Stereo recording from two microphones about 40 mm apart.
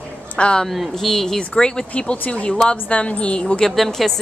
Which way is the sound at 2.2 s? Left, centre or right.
Left.